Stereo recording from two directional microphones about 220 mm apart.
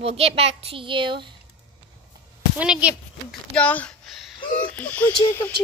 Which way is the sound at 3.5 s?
5° left (ahead or behind).